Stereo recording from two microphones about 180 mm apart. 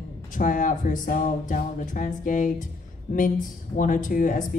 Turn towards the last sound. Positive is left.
turn(degrees=45)  # may be behind; listen again after turning